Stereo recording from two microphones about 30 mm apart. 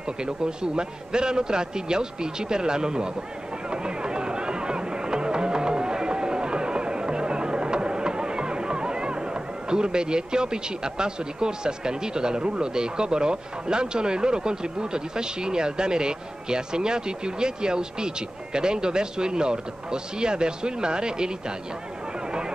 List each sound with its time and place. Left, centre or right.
0.2 s a man's voice: right